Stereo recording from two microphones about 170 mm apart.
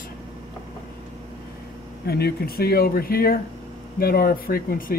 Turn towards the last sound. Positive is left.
turn(degrees=60)  # may be behind; listen again after turning